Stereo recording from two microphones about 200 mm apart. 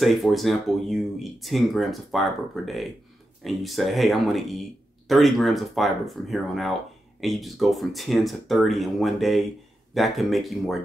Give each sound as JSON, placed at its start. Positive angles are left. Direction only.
{"t": 0.0, "sound": "speech", "side_deg": 0}